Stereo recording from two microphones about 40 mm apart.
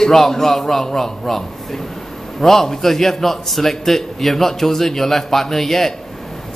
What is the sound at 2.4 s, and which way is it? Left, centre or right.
A man's voice, centre.